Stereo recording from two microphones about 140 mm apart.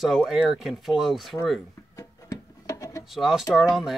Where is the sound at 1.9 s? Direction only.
25° left (ahead or behind).